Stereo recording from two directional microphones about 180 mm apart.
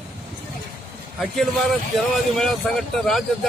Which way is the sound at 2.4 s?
Centre (ahead or behind).